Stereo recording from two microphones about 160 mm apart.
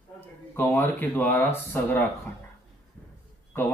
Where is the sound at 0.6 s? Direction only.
15° left (ahead or behind).